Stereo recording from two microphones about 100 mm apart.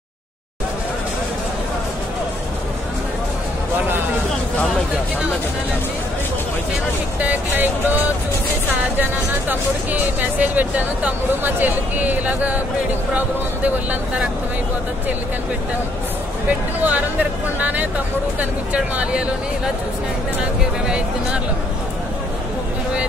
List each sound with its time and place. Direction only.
7.2 s speech: 15° right (ahead or behind)
9.5 s speech: 15° right (ahead or behind)
16.4 s speech: 15° right (ahead or behind)